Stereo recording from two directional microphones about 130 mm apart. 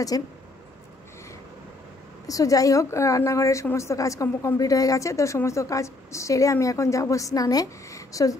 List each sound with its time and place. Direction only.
0.1 s a woman's voice: 30° left (ahead or behind)
2.2 s a woman's voice: 25° left (ahead or behind)